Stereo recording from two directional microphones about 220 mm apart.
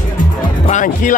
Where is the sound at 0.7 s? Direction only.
35° left (ahead or behind).